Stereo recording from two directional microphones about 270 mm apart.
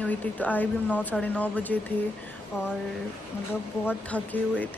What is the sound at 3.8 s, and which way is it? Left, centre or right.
Speech, centre.